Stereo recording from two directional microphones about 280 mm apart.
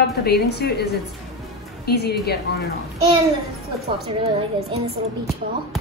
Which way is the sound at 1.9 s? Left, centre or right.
Left.